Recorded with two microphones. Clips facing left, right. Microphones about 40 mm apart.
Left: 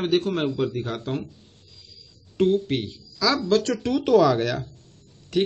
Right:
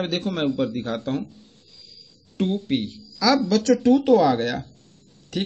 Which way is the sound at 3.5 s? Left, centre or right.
Left.